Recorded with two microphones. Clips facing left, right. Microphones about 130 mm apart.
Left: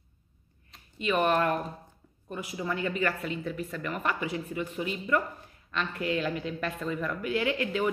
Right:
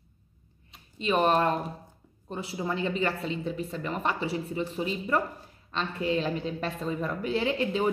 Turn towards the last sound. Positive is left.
turn(degrees=-30)  # may be behind; listen again after turning